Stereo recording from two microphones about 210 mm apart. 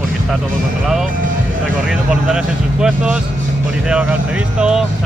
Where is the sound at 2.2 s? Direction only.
5° right (ahead or behind).